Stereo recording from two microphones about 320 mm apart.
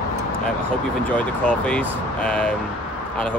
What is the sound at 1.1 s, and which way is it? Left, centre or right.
Speech, centre.